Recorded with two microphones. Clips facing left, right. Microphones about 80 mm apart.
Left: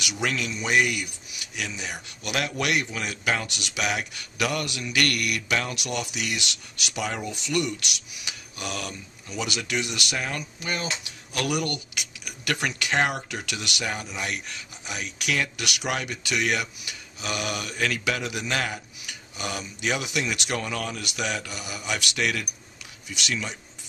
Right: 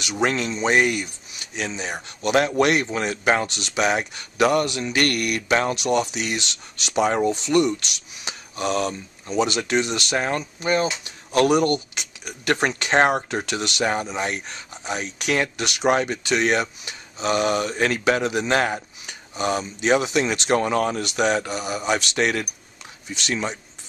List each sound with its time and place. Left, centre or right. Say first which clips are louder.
0.0 s speech: right 6 dB; right